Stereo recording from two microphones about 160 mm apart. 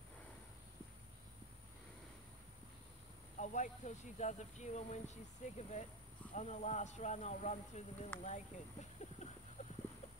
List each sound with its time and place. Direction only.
3.3 s speech: 50° left (ahead or behind)